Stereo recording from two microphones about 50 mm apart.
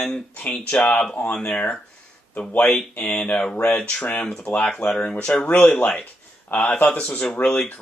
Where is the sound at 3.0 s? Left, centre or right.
Centre.